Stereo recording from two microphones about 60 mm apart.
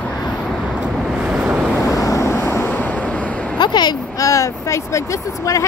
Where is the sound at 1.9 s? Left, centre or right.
Left.